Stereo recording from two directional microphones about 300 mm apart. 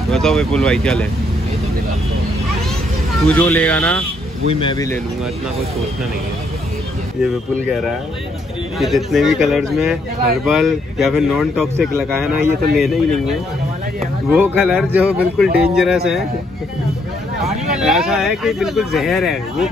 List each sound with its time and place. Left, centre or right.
0.1 s speech: centre
3.3 s speech: centre
4.5 s speech: centre
8.7 s speech: centre
14.3 s speech: centre
17.7 s speech: centre